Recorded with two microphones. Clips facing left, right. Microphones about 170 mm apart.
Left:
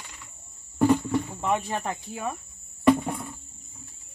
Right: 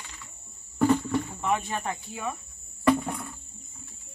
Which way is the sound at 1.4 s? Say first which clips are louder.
Left 1 dB; 35° left (ahead or behind).